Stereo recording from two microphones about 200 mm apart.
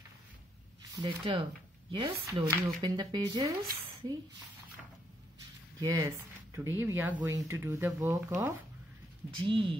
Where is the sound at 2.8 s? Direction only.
20° right (ahead or behind).